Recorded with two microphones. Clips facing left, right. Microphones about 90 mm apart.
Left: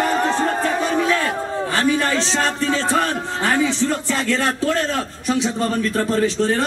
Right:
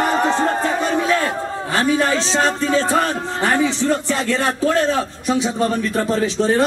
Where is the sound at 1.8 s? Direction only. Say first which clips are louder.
Right 2 dB; 5° right (ahead or behind).